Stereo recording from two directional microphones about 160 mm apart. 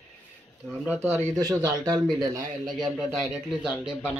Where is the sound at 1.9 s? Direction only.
Centre (ahead or behind).